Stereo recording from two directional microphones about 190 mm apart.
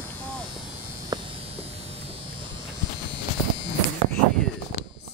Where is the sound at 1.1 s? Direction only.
20° right (ahead or behind).